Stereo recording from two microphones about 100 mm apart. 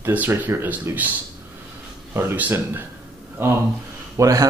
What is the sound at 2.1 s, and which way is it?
Speech, 20° right (ahead or behind).